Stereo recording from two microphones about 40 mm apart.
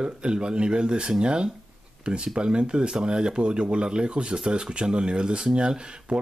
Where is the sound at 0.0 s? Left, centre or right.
Right.